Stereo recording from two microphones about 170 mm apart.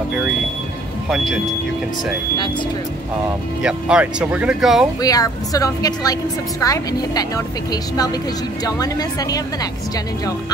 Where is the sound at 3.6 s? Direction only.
5° right (ahead or behind).